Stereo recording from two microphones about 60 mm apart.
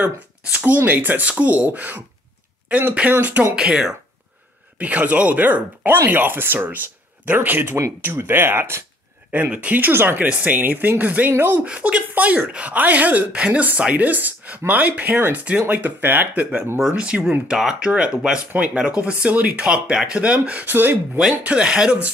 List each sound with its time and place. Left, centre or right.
0.0 s speech: right
3.5 s speech: centre
4.7 s speech: right
9.3 s speech: right
11.6 s speech: centre
16.8 s speech: centre
20.7 s speech: right
21.4 s speech: right